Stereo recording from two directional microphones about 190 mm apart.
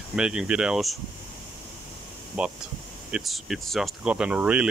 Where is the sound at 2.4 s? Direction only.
5° right (ahead or behind).